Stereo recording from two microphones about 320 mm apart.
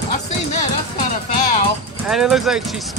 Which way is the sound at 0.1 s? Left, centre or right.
Left.